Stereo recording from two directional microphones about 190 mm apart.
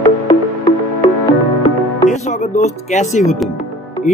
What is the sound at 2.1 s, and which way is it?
Speech, 40° left (ahead or behind).